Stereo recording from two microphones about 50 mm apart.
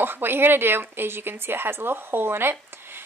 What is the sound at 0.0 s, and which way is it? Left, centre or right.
Speech, right.